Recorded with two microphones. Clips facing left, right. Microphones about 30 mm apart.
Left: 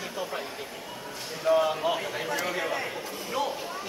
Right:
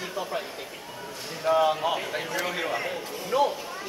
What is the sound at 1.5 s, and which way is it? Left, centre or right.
A man's voice, centre.